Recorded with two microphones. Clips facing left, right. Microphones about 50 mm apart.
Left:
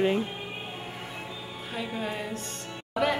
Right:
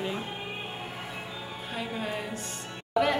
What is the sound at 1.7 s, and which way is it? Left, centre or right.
Speech, centre.